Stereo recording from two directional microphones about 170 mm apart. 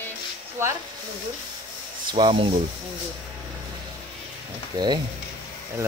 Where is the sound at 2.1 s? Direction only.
30° right (ahead or behind).